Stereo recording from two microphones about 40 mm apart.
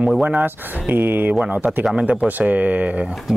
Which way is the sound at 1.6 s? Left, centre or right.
Centre.